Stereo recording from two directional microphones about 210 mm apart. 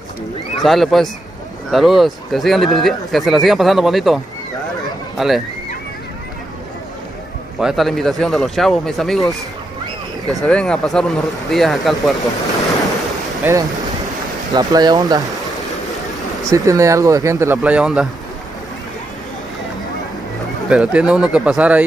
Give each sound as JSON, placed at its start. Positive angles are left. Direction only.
{"t": 0.6, "sound": "speech", "side_deg": 0}
{"t": 7.6, "sound": "speech", "side_deg": 0}
{"t": 13.4, "sound": "speech", "side_deg": -15}
{"t": 16.4, "sound": "speech", "side_deg": -15}
{"t": 20.6, "sound": "speech", "side_deg": -5}